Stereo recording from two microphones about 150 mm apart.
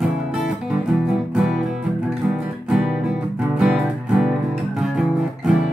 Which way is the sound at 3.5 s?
5° right (ahead or behind).